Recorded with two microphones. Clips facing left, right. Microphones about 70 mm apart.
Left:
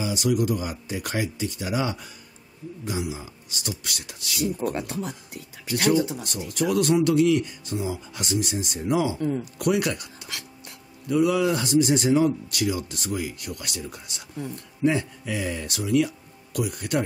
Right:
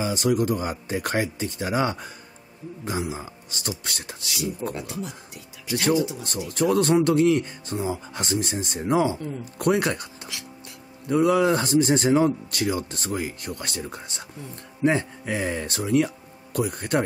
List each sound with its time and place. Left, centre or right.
0.0 s a man's voice: right
4.7 s speech: left
6.2 s a man's voice: right
11.1 s a man's voice: right